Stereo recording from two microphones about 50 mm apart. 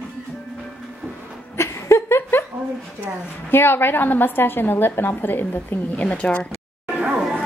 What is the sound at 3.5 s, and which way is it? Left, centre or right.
A woman's voice, left.